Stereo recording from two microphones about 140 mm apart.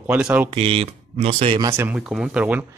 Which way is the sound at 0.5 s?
45° right (ahead or behind).